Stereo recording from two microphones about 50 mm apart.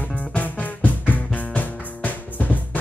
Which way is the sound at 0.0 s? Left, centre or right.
Left.